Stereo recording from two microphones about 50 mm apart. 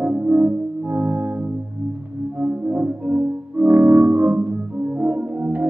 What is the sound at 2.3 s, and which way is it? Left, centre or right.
Music, right.